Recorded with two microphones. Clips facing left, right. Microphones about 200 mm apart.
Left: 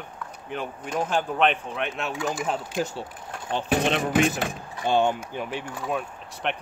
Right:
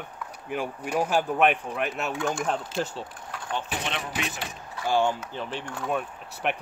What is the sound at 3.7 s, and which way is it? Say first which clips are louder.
Speech: left 10 dB; 45° left (ahead or behind).